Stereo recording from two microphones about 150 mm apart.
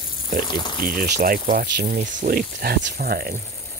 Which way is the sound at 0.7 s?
80° right.